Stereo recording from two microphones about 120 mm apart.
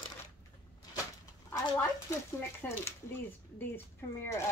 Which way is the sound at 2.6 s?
15° left (ahead or behind).